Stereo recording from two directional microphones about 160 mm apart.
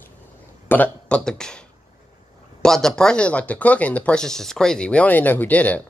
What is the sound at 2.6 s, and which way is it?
Speech, 5° left (ahead or behind).